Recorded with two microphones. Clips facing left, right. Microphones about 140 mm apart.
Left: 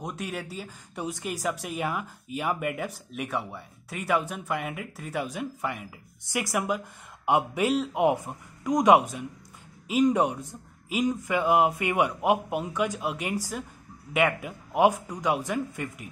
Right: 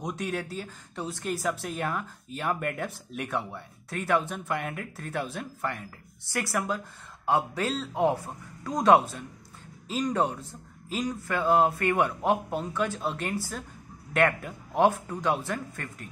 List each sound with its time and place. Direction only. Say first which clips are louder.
0.0 s speech: right 2 dB; 5° left (ahead or behind)